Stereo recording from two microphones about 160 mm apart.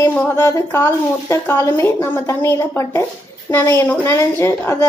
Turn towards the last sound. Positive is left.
turn(degrees=15)  # may be behind; listen again after turning